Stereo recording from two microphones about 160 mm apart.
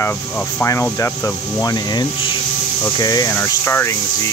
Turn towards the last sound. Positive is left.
turn(degrees=15)  # may be behind; listen again after turning